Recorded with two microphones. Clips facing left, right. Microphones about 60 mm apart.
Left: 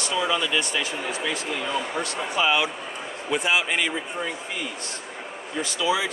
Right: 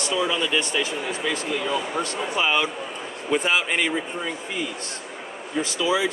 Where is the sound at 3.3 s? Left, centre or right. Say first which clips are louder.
Right 1 dB; right.